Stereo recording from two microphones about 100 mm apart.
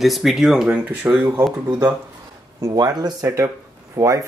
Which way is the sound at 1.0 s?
20° right (ahead or behind).